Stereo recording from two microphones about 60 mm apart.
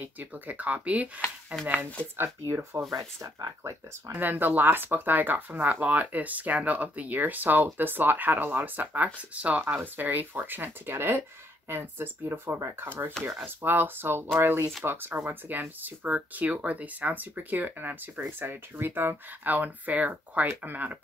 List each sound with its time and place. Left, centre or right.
0.0 s speech: right
2.1 s speech: right
2.9 s speech: right
4.1 s speech: right